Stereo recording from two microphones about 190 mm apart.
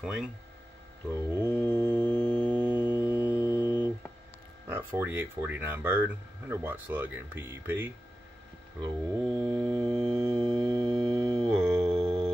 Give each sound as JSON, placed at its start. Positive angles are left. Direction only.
{"t": 0.0, "sound": "speech", "side_deg": -5}
{"t": 1.1, "sound": "a sound", "side_deg": -15}
{"t": 4.6, "sound": "speech", "side_deg": -10}
{"t": 9.4, "sound": "music", "side_deg": -15}
{"t": 12.0, "sound": "music", "side_deg": 5}